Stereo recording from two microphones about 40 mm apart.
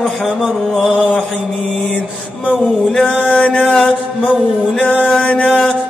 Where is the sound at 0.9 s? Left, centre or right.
Left.